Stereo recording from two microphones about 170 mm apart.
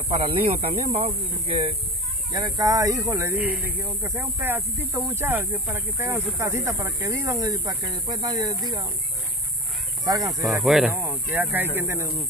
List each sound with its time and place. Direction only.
0.1 s speech: 35° right (ahead or behind)
10.0 s speech: 20° right (ahead or behind)
10.4 s speech: centre (ahead or behind)